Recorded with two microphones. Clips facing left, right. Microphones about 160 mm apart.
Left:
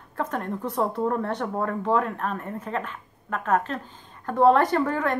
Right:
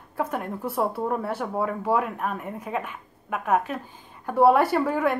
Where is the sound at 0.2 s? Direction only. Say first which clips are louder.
Even; 10° right (ahead or behind).